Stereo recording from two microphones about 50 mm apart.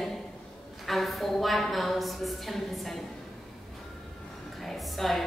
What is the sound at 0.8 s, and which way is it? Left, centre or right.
A woman's voice, centre.